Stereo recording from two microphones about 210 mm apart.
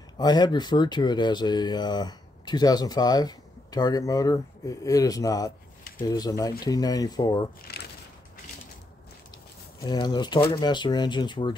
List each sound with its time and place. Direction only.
0.2 s speech: 20° left (ahead or behind)
9.8 s speech: 20° left (ahead or behind)